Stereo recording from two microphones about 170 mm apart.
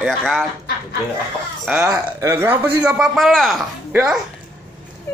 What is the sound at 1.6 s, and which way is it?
Speech, 5° right (ahead or behind).